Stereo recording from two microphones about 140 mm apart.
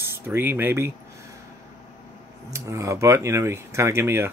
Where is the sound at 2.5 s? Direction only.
20° right (ahead or behind).